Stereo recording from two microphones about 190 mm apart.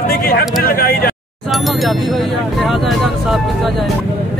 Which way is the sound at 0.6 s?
50° left (ahead or behind).